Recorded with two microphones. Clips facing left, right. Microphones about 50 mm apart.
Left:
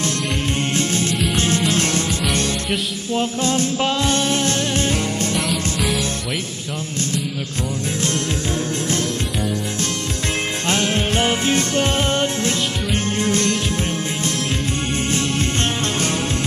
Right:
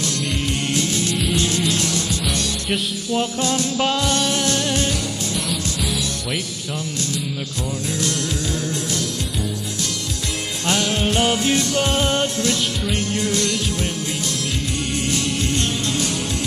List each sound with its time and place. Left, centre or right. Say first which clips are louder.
0.7 s music: left 1 dB; left
3.1 s music: left 1 dB; left
8.0 s music: left 2 dB; left
10.7 s music: even; left